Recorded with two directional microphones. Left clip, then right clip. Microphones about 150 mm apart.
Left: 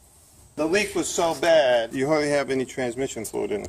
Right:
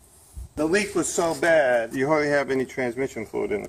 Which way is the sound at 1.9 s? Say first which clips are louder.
Right 1 dB; 5° right (ahead or behind).